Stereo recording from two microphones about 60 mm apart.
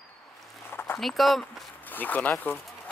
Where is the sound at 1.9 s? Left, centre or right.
Left.